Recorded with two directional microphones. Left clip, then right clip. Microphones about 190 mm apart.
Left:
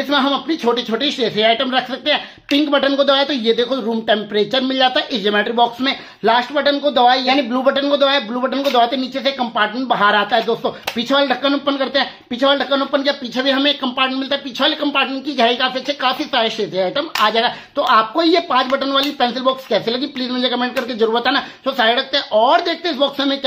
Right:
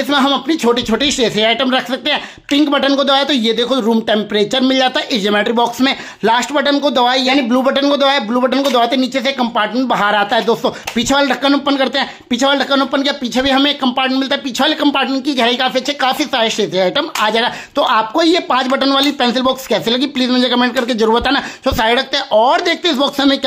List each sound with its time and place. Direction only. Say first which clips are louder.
0.1 s speech: right 3 dB; 30° right (ahead or behind); by 23.4 s 45° right (ahead or behind)